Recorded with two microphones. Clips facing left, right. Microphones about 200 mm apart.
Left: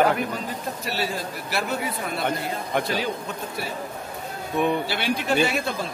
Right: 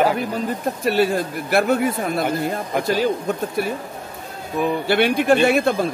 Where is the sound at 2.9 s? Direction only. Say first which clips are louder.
Right 8 dB; 50° right (ahead or behind).